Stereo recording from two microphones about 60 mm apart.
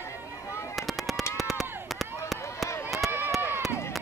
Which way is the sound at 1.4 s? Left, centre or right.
Centre.